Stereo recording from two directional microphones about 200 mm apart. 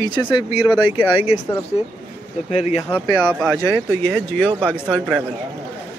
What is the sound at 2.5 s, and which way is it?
Speech, 35° left (ahead or behind).